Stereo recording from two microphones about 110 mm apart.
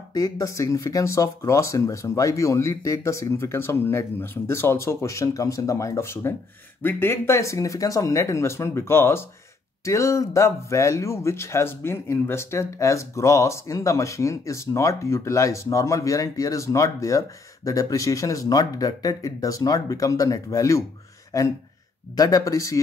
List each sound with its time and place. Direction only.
0.1 s speech: 35° left (ahead or behind)